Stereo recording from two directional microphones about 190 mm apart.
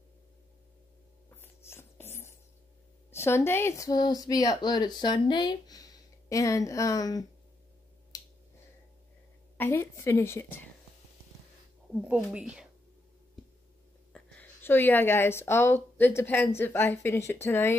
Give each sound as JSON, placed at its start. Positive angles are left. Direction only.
{"t": 1.3, "sound": "a sound", "side_deg": 10}
{"t": 3.1, "sound": "speech", "side_deg": 15}
{"t": 8.1, "sound": "finger snapping", "side_deg": 20}
{"t": 9.6, "sound": "a woman's voice", "side_deg": 15}
{"t": 12.1, "sound": "speech", "side_deg": -5}
{"t": 14.1, "sound": "a woman's voice", "side_deg": 10}